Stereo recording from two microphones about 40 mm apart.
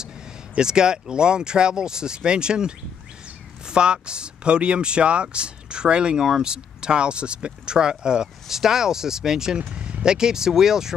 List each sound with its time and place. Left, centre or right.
0.6 s speech: centre
9.6 s speech: right